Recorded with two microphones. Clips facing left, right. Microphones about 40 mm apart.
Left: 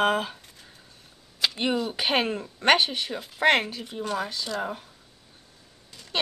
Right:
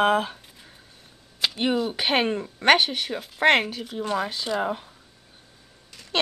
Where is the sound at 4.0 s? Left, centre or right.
Centre.